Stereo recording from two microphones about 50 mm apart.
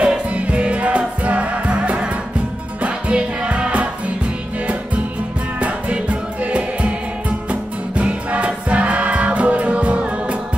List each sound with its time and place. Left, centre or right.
0.0 s music: right
5.6 s music: right